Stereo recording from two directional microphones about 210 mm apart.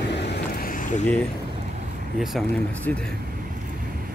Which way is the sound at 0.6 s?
40° left (ahead or behind).